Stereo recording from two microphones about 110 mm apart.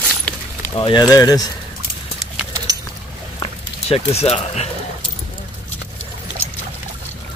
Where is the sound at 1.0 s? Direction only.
35° left (ahead or behind).